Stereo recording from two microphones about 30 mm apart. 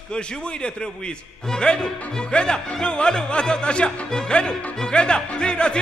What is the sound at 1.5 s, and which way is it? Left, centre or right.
Music, left.